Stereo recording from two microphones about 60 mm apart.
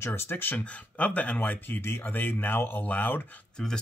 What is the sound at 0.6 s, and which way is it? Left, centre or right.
Speech, left.